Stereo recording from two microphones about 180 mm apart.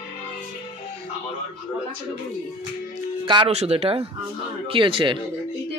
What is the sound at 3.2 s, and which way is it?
Speech, 25° right (ahead or behind).